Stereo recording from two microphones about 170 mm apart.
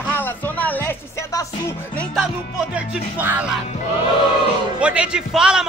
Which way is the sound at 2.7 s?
10° right (ahead or behind).